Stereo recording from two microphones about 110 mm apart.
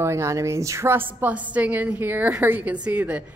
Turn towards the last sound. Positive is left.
turn(degrees=-15)  # may be behind; listen again after turning